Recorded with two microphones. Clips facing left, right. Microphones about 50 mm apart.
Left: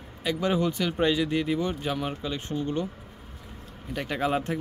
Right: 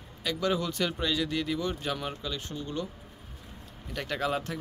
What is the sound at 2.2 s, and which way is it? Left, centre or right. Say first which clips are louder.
Speech: left 6 dB; left.